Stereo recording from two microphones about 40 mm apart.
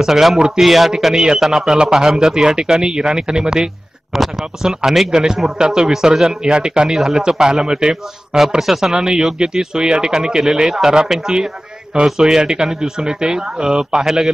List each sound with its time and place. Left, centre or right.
0.0 s speech: centre
4.1 s speech: centre
7.0 s speech: centre